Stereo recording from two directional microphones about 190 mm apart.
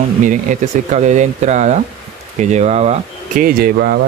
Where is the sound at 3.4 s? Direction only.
50° right (ahead or behind).